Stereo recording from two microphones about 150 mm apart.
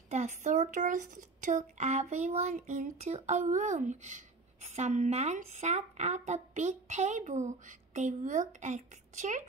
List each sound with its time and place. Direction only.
0.1 s a woman's voice: 50° right (ahead or behind)